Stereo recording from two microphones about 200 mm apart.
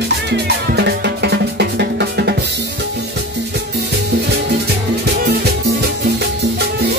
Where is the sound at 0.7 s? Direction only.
55° right (ahead or behind).